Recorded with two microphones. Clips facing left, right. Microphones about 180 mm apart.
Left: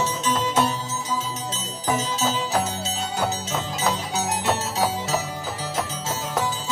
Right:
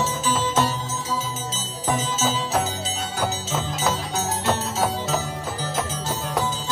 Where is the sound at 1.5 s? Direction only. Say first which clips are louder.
Even; centre (ahead or behind).